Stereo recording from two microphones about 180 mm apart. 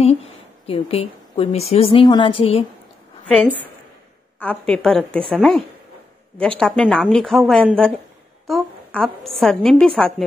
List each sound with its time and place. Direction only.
0.7 s a woman's voice: 35° left (ahead or behind)
3.3 s a woman's voice: 5° left (ahead or behind)
6.6 s a woman's voice: 5° left (ahead or behind)